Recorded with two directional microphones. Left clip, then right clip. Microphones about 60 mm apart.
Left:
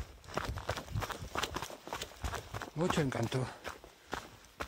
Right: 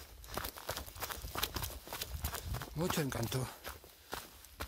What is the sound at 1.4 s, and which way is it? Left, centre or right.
Walk, right.